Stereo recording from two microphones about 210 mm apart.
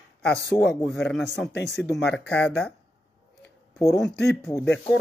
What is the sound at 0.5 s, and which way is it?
Speech, 20° left (ahead or behind).